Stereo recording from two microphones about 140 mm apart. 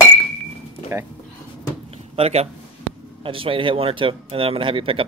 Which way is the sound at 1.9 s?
45° right (ahead or behind).